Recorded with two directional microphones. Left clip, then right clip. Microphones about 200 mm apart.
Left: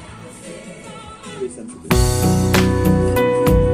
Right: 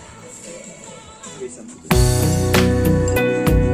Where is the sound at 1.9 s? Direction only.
Centre (ahead or behind).